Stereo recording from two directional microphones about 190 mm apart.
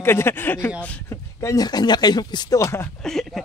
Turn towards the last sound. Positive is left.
turn(degrees=0)  # may be behind; listen again after turning